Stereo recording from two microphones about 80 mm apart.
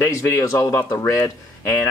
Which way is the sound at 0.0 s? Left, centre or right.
Left.